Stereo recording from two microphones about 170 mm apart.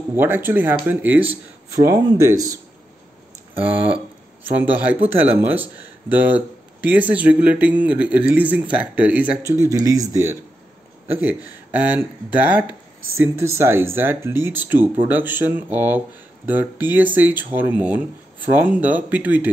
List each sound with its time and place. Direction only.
0.1 s speech: 10° right (ahead or behind)
3.6 s speech: 10° right (ahead or behind)
9.5 s speech: 20° right (ahead or behind)